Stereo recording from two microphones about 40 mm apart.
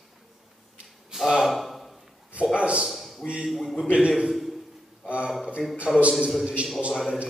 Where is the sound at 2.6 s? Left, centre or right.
Right.